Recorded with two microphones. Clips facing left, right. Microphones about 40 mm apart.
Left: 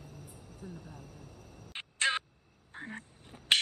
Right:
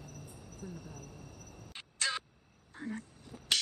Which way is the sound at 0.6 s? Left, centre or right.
Left.